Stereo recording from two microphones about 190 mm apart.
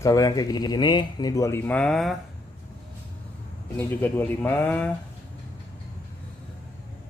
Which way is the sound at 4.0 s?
10° left (ahead or behind).